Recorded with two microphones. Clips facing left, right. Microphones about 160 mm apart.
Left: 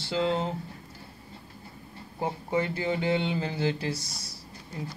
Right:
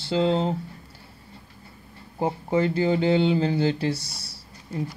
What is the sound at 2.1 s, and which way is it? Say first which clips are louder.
Speech: right 5 dB; 35° right (ahead or behind).